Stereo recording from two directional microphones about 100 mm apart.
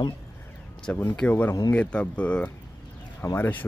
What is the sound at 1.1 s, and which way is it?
Speech, 15° left (ahead or behind).